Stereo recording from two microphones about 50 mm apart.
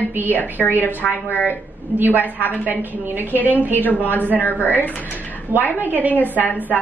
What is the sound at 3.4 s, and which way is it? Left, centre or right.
Speech, left.